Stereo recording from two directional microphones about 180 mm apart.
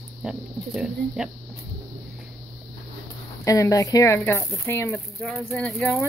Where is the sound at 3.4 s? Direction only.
20° left (ahead or behind).